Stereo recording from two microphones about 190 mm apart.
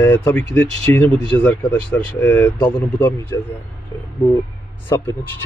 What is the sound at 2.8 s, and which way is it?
Speech, 20° left (ahead or behind).